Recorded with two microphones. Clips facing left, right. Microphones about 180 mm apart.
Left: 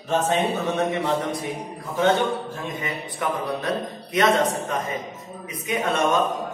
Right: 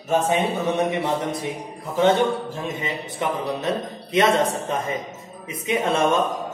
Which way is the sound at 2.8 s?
25° right (ahead or behind).